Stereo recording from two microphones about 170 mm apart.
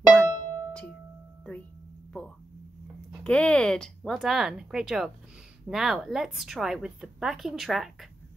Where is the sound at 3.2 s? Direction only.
5° left (ahead or behind).